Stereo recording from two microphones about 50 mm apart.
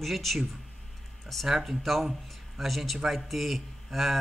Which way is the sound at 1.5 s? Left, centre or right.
Centre.